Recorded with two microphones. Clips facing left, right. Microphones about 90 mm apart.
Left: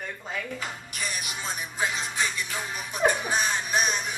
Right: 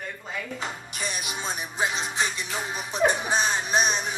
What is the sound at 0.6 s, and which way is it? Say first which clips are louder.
Music: right 2 dB; 20° right (ahead or behind).